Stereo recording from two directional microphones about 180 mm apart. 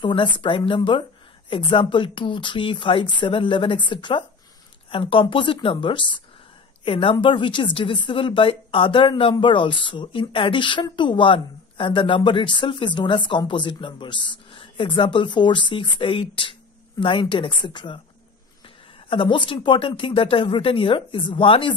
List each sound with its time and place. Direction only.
0.0 s a woman's voice: 25° left (ahead or behind)
19.0 s a woman's voice: 25° left (ahead or behind)